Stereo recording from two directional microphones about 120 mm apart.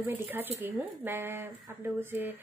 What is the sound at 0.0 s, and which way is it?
A woman's voice, 15° right (ahead or behind).